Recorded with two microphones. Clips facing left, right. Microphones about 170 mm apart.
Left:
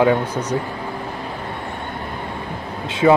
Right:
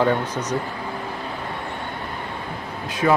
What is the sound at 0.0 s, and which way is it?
Speech, 10° left (ahead or behind).